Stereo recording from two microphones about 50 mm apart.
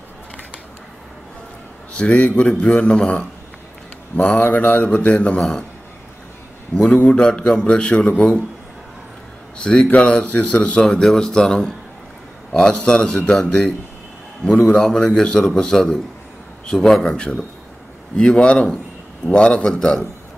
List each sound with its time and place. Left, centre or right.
2.0 s a man's voice: left
4.4 s mantra: left
4.9 s a man's voice: left
5.4 s a man's voice: centre
6.8 s a man's voice: left
7.2 s a man's voice: centre
9.6 s a man's voice: centre
10.8 s a man's voice: centre
14.4 s a man's voice: left
14.7 s a man's voice: centre
17.0 s a man's voice: centre